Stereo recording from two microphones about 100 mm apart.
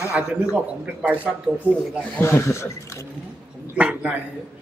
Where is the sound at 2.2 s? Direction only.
25° left (ahead or behind).